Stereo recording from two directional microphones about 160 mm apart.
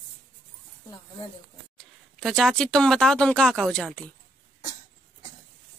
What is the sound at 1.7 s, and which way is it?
Speech, centre (ahead or behind).